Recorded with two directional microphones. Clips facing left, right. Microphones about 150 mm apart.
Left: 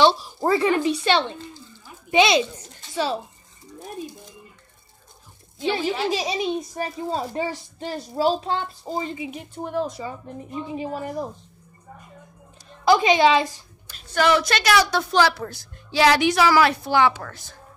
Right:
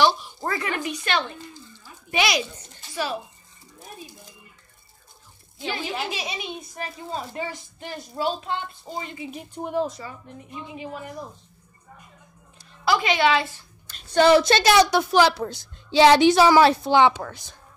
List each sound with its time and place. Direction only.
0.0 s a woman's voice: 35° left (ahead or behind)
6.0 s a woman's voice: 35° left (ahead or behind)
9.6 s speech: 10° right (ahead or behind)
10.2 s a woman's voice: 35° left (ahead or behind)
12.8 s a woman's voice: 20° left (ahead or behind)
14.1 s a woman's voice: 30° right (ahead or behind)
14.9 s a woman's voice: 15° right (ahead or behind)